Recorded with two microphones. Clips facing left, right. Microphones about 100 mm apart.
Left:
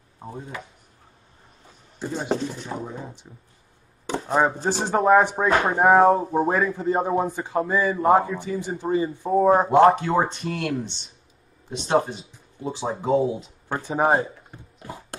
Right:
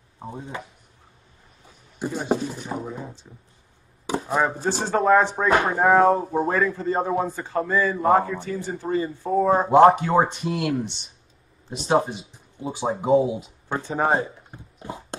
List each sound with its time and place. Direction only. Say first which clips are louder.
0.2 s speech: right 1 dB; 20° right (ahead or behind)
2.0 s speech: right 1 dB; 10° right (ahead or behind)
4.0 s chopping: even; 5° right (ahead or behind)
4.6 s a man's voice: left 1 dB; 15° left (ahead or behind)
9.8 s speech: right 2 dB; 5° right (ahead or behind)
13.8 s a man's voice: left 2 dB; 15° left (ahead or behind)
14.5 s horse: right 3 dB; 20° right (ahead or behind)